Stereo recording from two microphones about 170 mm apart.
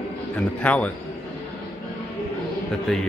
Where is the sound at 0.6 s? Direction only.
10° left (ahead or behind).